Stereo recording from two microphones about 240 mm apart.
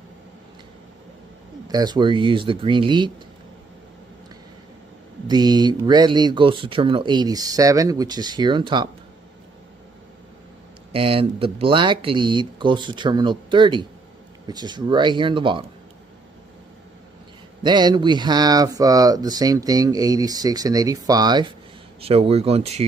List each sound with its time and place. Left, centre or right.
1.7 s speech: centre
5.3 s speech: centre
10.9 s speech: right
17.6 s speech: centre